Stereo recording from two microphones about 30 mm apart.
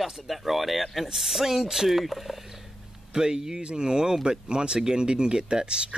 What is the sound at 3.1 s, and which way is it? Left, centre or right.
Speech, right.